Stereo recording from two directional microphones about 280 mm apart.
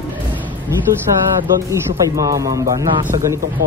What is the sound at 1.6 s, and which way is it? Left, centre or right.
A man's voice, centre.